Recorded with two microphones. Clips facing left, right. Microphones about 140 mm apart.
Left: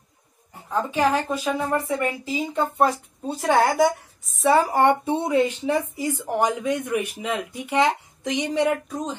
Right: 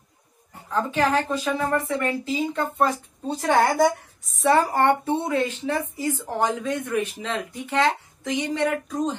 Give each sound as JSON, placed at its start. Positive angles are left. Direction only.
{"t": 0.7, "sound": "speech", "side_deg": 10}